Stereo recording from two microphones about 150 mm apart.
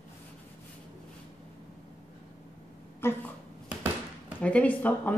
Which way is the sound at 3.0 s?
15° left (ahead or behind).